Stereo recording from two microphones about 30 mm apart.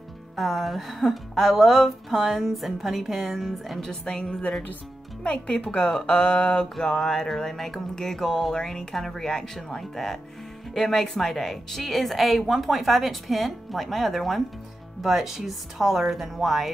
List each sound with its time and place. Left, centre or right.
0.4 s speech: centre
3.8 s music: centre
5.2 s speech: left
7.0 s a sound: centre
7.5 s music: centre
8.5 s a sound: centre
8.9 s music: centre
10.7 s speech: centre
15.0 s a woman's voice: centre